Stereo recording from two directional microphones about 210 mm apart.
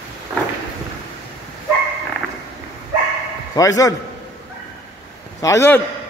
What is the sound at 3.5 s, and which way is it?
Speech, 15° left (ahead or behind).